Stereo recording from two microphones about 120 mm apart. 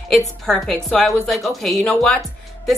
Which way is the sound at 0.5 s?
5° left (ahead or behind).